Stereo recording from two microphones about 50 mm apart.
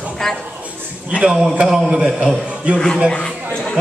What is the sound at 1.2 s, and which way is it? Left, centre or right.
Music, right.